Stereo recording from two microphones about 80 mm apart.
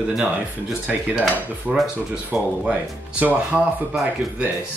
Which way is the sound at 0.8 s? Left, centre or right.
Centre.